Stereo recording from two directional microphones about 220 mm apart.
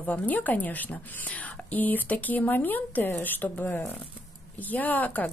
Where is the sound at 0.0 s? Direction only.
5° left (ahead or behind).